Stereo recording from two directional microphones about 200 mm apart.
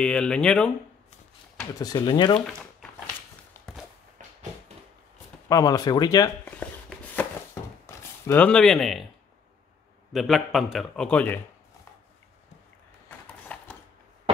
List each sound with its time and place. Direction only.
0.0 s a man's voice: 5° left (ahead or behind)
1.6 s speech: 20° left (ahead or behind)
3.6 s walk: 15° left (ahead or behind)
5.5 s speech: 20° left (ahead or behind)
6.4 s a sound: 5° left (ahead or behind)
10.1 s a man's voice: centre (ahead or behind)